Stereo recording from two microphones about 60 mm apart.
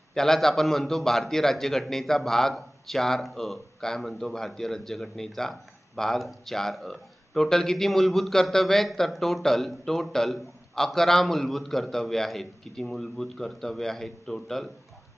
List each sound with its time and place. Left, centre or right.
0.1 s a man's voice: centre